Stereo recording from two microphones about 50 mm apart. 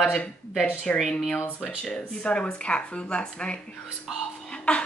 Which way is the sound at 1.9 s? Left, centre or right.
Centre.